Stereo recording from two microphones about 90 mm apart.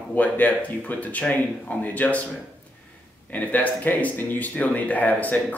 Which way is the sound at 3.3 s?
15° left (ahead or behind).